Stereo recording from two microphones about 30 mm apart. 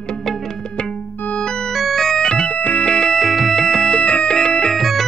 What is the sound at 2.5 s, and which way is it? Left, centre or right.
Music, left.